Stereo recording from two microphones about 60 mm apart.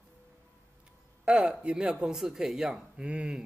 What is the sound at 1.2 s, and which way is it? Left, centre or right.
Speech, centre.